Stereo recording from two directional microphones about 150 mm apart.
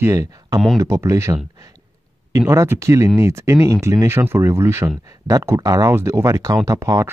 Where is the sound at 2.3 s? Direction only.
20° right (ahead or behind).